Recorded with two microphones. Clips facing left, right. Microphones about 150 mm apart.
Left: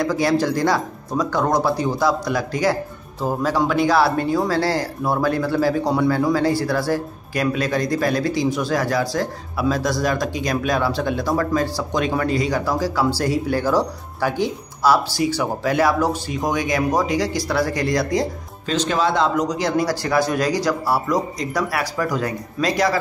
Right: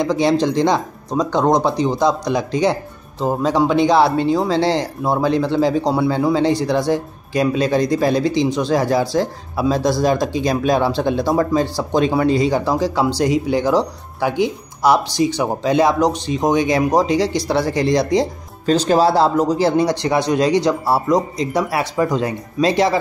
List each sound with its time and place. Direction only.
0.0 s speech: 20° right (ahead or behind)
18.7 s speech: 35° right (ahead or behind)